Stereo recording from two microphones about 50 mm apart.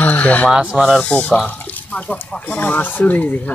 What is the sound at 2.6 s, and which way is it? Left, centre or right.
Speech, left.